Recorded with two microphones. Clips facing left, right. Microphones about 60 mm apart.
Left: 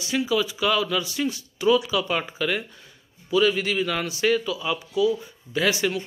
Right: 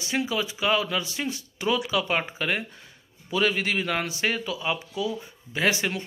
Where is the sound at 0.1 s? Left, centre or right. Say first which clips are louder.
Left 4 dB; right.